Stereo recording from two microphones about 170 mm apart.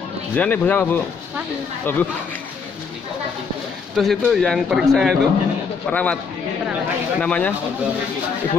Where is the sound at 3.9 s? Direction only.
Centre (ahead or behind).